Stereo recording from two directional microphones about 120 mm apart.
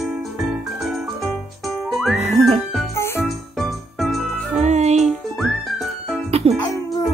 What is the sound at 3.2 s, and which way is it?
Music, centre (ahead or behind).